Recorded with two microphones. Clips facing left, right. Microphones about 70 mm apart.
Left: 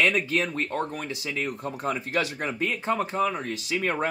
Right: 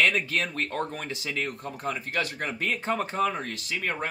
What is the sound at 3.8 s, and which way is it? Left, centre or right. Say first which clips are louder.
Speech: left 4 dB; left.